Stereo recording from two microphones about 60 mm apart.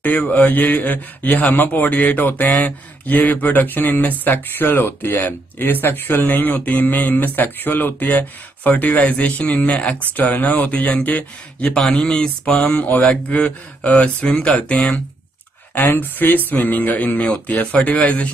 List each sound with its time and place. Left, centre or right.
0.0 s a man's voice: left
15.7 s a man's voice: left